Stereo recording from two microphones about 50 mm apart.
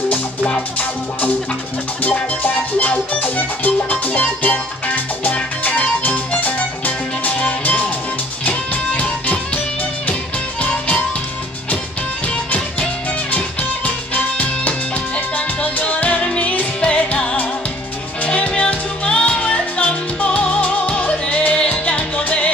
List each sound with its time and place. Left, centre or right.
0.5 s music: left
10.6 s music: left
12.4 s music: left